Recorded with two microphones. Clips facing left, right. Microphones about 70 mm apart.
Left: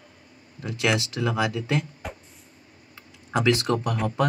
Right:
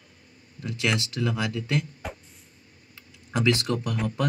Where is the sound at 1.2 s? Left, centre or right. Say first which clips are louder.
Left 4 dB; left.